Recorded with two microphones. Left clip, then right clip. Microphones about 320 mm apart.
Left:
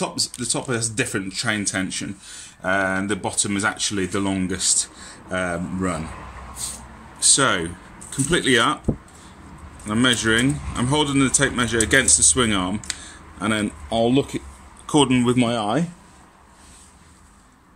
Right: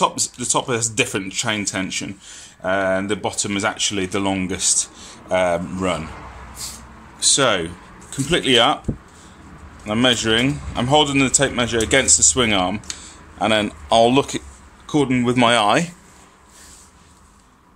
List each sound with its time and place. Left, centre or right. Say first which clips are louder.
0.0 s speech: right 6 dB; centre
7.2 s speech: right 2 dB; centre
9.8 s speech: right 2 dB; centre
14.1 s speech: right 3 dB; centre
14.9 s speech: left 1 dB; centre
15.3 s speech: right 7 dB; right